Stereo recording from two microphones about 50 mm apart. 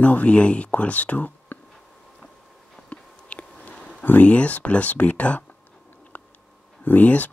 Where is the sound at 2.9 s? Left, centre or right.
Left.